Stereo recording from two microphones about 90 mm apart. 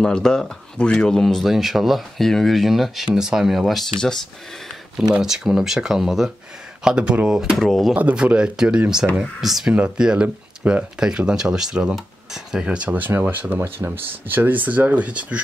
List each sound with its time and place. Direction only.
0.0 s speech: 5° left (ahead or behind)
5.1 s speech: 5° right (ahead or behind)
7.9 s speech: 15° right (ahead or behind)